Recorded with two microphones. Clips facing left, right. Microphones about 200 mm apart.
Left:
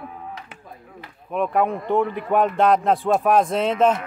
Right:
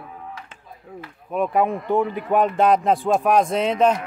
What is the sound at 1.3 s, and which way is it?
A man's voice, centre (ahead or behind).